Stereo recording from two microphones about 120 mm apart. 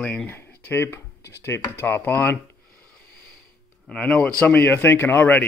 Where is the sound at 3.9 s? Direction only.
10° left (ahead or behind).